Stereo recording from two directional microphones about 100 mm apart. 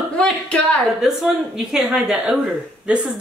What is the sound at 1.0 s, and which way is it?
A woman's voice, 5° right (ahead or behind).